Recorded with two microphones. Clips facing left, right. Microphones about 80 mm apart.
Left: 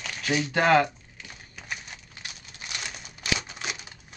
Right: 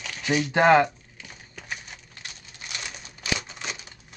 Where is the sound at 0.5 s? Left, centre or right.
Centre.